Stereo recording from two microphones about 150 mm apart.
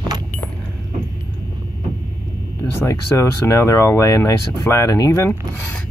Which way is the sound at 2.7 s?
20° left (ahead or behind).